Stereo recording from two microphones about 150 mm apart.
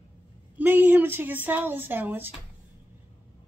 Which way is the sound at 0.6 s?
10° right (ahead or behind).